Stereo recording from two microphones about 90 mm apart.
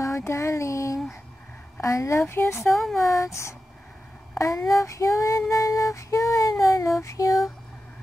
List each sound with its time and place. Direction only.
0.0 s a sound: 30° left (ahead or behind)
1.8 s female singing: 35° left (ahead or behind)
2.6 s speech: centre (ahead or behind)
3.0 s female singing: 35° left (ahead or behind)